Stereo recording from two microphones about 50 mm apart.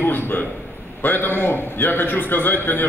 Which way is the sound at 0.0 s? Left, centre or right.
Left.